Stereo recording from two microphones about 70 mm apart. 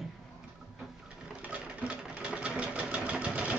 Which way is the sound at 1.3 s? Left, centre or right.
Centre.